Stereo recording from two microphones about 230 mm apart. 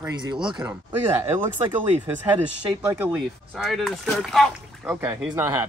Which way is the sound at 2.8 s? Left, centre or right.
Centre.